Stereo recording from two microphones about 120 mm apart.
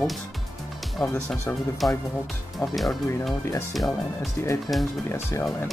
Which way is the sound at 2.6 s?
30° left (ahead or behind).